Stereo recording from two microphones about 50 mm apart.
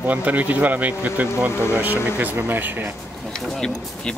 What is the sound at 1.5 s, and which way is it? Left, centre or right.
Speech, left.